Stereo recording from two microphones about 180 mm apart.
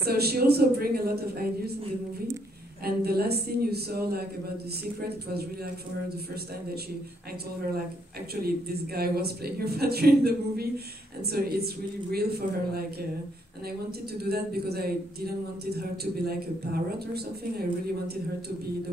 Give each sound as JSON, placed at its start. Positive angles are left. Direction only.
{"t": 0.0, "sound": "speech", "side_deg": -60}
{"t": 2.8, "sound": "speech", "side_deg": -60}
{"t": 8.4, "sound": "speech", "side_deg": -60}
{"t": 14.2, "sound": "speech", "side_deg": -60}